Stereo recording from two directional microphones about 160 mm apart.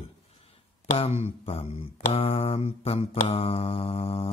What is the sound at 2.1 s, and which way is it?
Speech, 35° left (ahead or behind).